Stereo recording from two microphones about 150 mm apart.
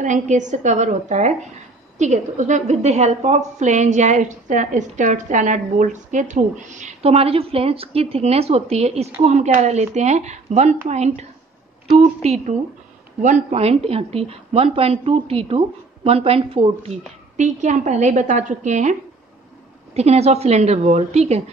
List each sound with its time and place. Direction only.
0.0 s a woman's voice: 55° right (ahead or behind)